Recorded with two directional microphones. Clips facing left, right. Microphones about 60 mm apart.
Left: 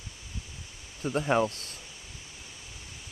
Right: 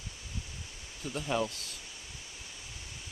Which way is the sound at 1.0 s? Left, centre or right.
Left.